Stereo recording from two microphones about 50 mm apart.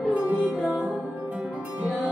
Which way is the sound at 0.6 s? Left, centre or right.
Centre.